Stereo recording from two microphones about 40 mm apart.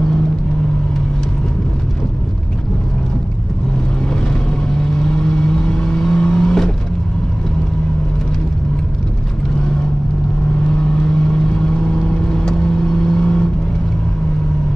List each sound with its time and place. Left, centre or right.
5.0 s vehicle: centre
11.5 s vehicle: left